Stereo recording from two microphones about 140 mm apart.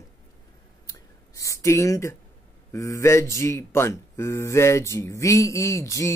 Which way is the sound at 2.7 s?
20° left (ahead or behind).